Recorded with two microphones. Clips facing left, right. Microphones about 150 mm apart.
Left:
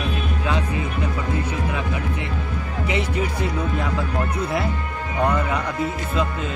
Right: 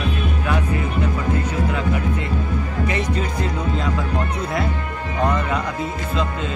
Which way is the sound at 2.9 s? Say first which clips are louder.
Left 4 dB; 10° left (ahead or behind).